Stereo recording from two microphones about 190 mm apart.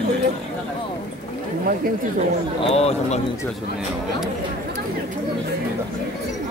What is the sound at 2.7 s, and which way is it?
Speech, 35° left (ahead or behind).